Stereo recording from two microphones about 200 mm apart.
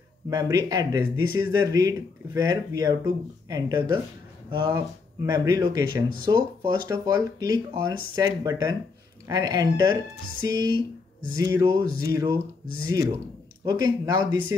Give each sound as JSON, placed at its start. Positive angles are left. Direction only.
{"t": 0.3, "sound": "speech", "side_deg": -15}
{"t": 13.7, "sound": "speech", "side_deg": -20}